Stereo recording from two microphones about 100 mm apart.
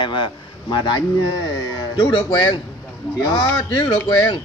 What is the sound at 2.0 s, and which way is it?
Speech, 50° left (ahead or behind).